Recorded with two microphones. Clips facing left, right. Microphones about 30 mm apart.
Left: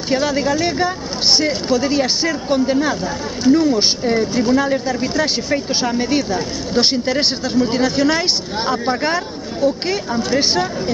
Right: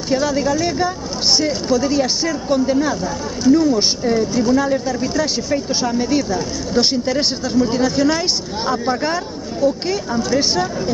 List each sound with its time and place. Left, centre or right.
0.1 s speech: left